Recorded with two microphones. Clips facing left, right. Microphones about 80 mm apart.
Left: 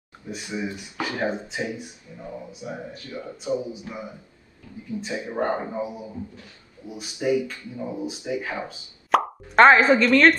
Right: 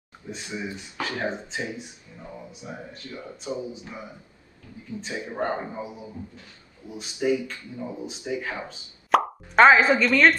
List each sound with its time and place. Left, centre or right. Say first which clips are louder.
0.3 s speech: left 3 dB; centre
2.5 s speech: left 4 dB; centre
5.0 s speech: left 3 dB; centre
9.1 s plop: left 1 dB; centre
9.9 s a woman's voice: left 2 dB; centre